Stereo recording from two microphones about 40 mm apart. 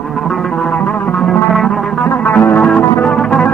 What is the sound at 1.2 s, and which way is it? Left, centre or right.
Music, centre.